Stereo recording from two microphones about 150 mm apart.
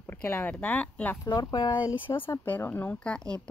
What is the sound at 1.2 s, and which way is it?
Speech, 25° left (ahead or behind).